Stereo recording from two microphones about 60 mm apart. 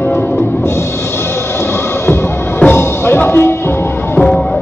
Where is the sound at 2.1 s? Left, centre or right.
Left.